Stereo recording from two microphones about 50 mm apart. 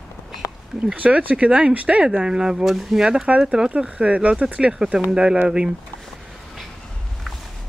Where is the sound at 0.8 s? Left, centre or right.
Right.